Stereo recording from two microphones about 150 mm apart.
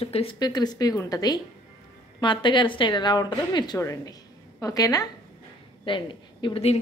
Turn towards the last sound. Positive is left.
turn(degrees=35)  # may be behind; listen again after turning